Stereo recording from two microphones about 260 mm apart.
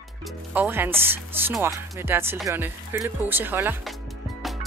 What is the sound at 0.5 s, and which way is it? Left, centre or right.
Speech, centre.